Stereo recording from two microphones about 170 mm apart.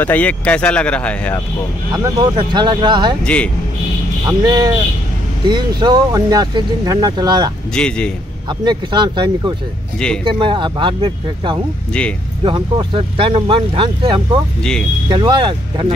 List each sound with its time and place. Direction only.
0.0 s speech: 10° left (ahead or behind)
1.9 s speech: 25° right (ahead or behind)
4.3 s speech: 25° right (ahead or behind)
7.7 s a man's voice: 5° left (ahead or behind)
8.5 s speech: 25° right (ahead or behind)
14.6 s a man's voice: 5° left (ahead or behind)
15.0 s speech: 25° right (ahead or behind)